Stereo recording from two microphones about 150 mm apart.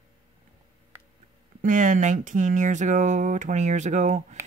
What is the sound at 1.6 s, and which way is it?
Speech, 60° right (ahead or behind).